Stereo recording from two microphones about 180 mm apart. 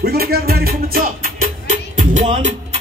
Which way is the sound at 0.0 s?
60° right (ahead or behind).